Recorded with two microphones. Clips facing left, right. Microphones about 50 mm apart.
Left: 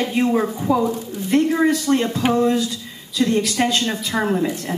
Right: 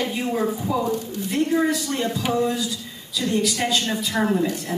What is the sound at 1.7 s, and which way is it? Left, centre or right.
A man's voice, left.